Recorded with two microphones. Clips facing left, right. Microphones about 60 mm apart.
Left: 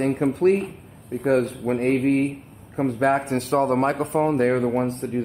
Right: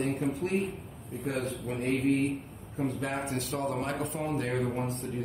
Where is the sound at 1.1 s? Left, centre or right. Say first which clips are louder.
Left 12 dB; left.